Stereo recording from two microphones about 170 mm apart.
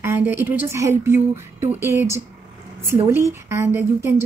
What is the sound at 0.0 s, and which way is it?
A woman's voice, 15° right (ahead or behind).